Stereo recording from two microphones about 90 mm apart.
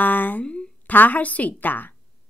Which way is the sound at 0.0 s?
20° left (ahead or behind).